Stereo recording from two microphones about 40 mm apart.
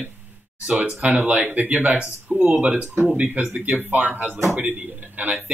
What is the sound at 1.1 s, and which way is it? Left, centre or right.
Speech, right.